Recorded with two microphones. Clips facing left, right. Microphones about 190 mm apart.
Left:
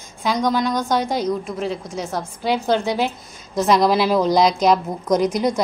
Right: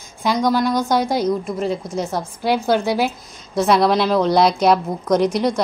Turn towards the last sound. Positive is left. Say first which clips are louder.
# right 1 dB
turn(degrees=0)  # may be behind; listen again after turning